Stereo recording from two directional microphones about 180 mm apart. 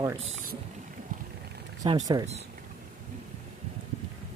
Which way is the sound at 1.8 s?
30° right (ahead or behind).